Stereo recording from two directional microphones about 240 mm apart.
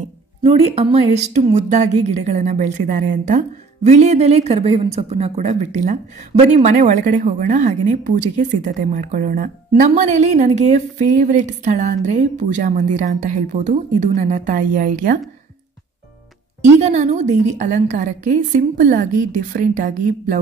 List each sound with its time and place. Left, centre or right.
0.4 s a woman's voice: right
16.6 s a woman's voice: right